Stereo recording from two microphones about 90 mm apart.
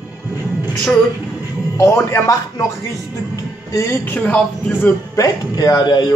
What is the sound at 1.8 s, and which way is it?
Speech, 35° left (ahead or behind).